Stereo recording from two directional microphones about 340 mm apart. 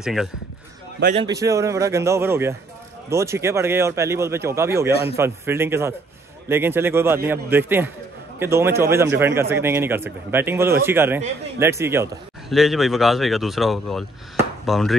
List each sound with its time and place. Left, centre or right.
0.0 s speech: centre
0.9 s a man's voice: right
1.2 s a man's voice: centre